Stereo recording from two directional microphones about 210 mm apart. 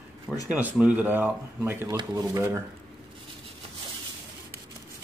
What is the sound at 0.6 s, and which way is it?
Speech, 5° right (ahead or behind).